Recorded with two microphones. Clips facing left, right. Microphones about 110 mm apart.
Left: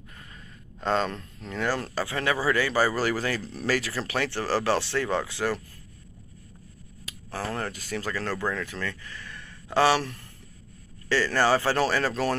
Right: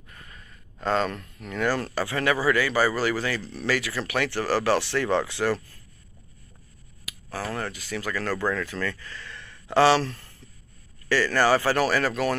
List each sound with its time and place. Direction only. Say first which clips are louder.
0.8 s speech: right 1 dB; 25° left (ahead or behind)
1.7 s speech: right 2 dB; 20° left (ahead or behind)
7.2 s speech: even; 30° left (ahead or behind)
7.7 s speech: even; 40° left (ahead or behind)
8.1 s speech: right 3 dB; 25° left (ahead or behind)